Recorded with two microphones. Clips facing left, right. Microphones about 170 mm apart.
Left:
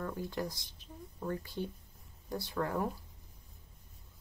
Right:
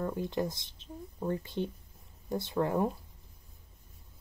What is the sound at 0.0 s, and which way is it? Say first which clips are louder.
Speech: right 5 dB; 20° right (ahead or behind).